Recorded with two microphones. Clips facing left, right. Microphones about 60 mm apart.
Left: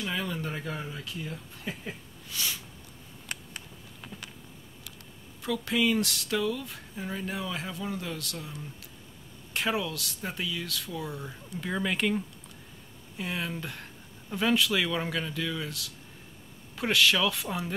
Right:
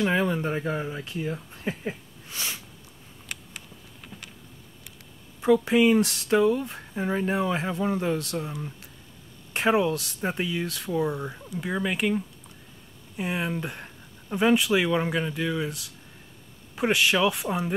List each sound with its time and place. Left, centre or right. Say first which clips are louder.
0.0 s speech: right 9 dB; right
5.4 s speech: right 8 dB; right
11.5 s speech: right 2 dB; centre
13.2 s speech: right 5 dB; right